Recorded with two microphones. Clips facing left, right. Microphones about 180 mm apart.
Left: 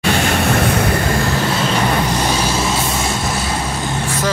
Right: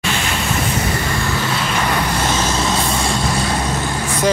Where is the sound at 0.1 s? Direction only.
60° left (ahead or behind).